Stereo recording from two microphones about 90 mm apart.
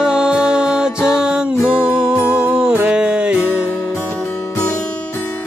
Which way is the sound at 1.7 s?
25° left (ahead or behind).